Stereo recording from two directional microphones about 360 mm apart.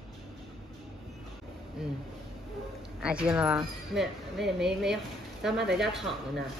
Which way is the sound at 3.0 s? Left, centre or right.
Centre.